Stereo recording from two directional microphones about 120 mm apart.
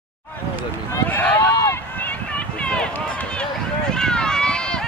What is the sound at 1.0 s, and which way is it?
Run, 15° left (ahead or behind).